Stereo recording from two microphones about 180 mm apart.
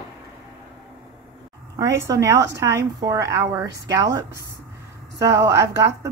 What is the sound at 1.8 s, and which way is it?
A woman's voice, 20° right (ahead or behind).